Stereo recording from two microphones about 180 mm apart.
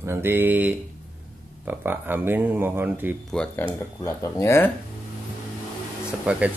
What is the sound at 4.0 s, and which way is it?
Speech, 15° left (ahead or behind).